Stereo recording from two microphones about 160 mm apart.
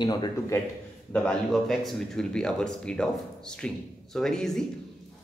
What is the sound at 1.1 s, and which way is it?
Speech, 5° left (ahead or behind).